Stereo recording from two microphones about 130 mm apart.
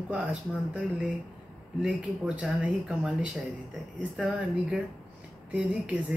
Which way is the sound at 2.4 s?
5° right (ahead or behind).